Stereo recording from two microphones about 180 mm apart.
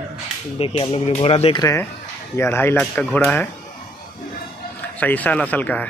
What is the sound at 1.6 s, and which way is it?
Speech, 20° left (ahead or behind).